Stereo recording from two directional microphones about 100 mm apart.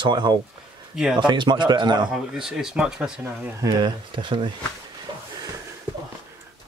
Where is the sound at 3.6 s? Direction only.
50° right (ahead or behind).